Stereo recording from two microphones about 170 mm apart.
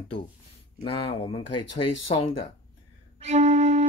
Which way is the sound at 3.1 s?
40° right (ahead or behind).